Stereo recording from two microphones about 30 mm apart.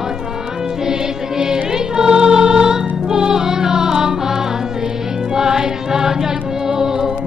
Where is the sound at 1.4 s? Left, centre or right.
Right.